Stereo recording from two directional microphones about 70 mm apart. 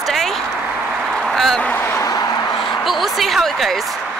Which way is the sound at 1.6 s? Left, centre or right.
Left.